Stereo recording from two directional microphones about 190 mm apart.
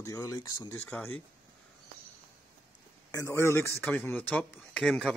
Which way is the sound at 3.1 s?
15° left (ahead or behind).